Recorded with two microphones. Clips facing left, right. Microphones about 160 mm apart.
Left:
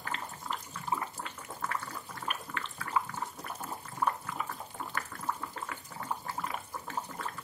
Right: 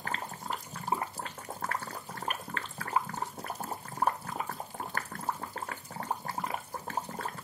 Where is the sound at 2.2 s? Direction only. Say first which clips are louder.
Right 1 dB; 35° right (ahead or behind).